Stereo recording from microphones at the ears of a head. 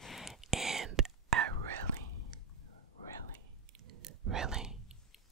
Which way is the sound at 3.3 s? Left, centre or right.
Right.